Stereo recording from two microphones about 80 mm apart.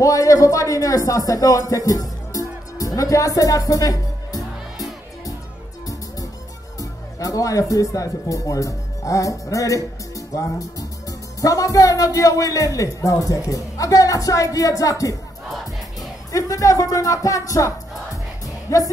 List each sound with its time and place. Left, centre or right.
0.0 s speech: left
6.8 s speech: left
16.3 s speech: left